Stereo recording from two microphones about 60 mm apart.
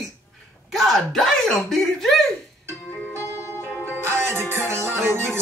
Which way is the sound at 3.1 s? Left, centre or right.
Left.